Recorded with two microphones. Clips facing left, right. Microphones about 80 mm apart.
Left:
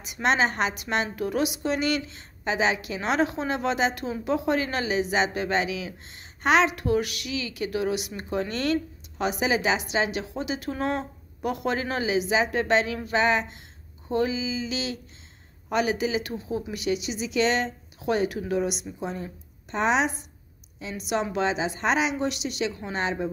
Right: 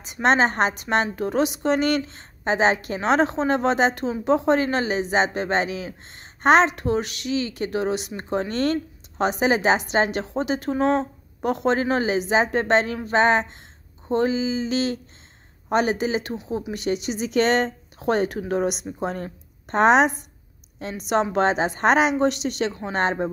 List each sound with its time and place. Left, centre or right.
0.0 s a woman's voice: right
21.1 s a woman's voice: right